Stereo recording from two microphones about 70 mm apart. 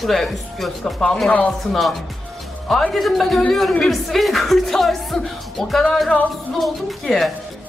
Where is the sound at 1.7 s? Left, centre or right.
Centre.